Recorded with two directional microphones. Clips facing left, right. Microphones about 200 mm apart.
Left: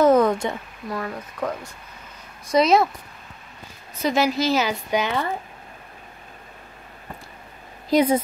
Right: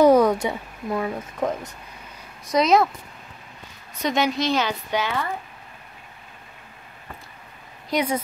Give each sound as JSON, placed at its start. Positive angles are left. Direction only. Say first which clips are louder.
{"t": 0.0, "sound": "a sound", "louder": "right 1 dB", "side_deg": -10}
{"t": 0.8, "sound": "speech", "louder": "right 4 dB", "side_deg": -20}
{"t": 2.5, "sound": "a woman's voice", "louder": "left 1 dB", "side_deg": 0}
{"t": 4.0, "sound": "a woman's voice", "louder": "left 2 dB", "side_deg": 0}
{"t": 7.9, "sound": "a woman's voice", "louder": "left 6 dB", "side_deg": 30}